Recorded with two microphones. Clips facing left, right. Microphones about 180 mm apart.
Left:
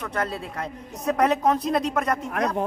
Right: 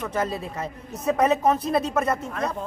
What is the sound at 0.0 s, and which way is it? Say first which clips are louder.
A woman's voice: right 2 dB; 5° right (ahead or behind).